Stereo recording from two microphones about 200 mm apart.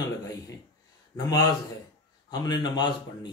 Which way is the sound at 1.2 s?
20° left (ahead or behind).